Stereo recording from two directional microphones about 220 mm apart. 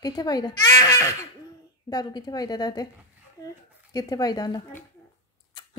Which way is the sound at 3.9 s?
15° left (ahead or behind).